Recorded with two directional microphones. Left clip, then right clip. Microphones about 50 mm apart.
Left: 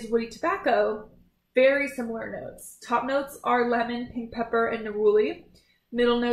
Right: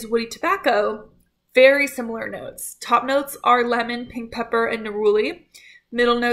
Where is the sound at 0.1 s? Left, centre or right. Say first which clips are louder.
Right 5 dB; right.